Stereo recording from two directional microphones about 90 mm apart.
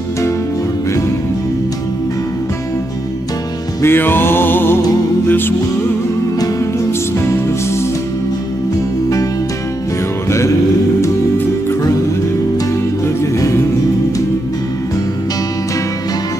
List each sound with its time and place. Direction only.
3.8 s music: 25° left (ahead or behind)
6.8 s music: 30° left (ahead or behind)
11.0 s music: 35° left (ahead or behind)
13.0 s music: 30° left (ahead or behind)